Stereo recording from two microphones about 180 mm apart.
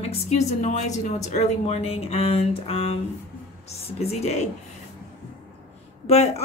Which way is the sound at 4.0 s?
35° left (ahead or behind).